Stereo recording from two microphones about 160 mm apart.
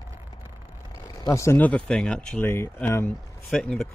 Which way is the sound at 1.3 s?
15° left (ahead or behind).